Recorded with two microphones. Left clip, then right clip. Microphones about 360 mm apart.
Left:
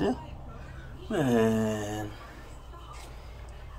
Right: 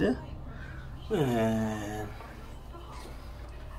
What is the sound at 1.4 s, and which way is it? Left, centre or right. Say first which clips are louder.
Speech: left 3 dB; centre.